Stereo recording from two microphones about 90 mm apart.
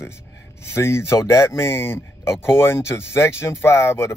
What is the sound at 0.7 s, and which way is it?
Speech, 30° left (ahead or behind).